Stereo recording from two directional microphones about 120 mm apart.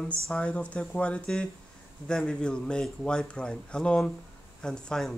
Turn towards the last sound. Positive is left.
turn(degrees=5)  # may be behind; listen again after turning